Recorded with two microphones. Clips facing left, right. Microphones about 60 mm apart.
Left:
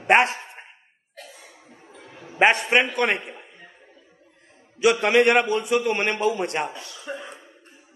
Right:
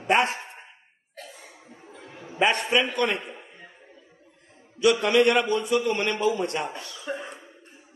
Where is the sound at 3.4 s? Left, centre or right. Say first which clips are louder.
Even; centre.